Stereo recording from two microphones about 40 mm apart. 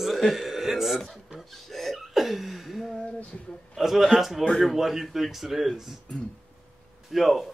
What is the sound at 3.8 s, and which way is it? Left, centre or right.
A man's voice, centre.